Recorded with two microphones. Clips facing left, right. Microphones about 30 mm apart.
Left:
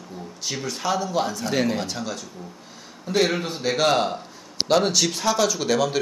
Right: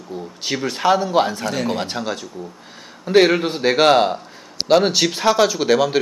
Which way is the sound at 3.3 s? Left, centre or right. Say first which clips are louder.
Right 7 dB; right.